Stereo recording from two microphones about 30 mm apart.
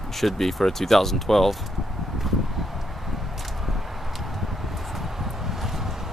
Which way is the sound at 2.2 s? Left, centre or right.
Centre.